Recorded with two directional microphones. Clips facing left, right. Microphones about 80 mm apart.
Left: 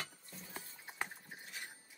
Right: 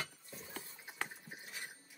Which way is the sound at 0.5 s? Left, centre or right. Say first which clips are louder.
Left 1 dB; centre.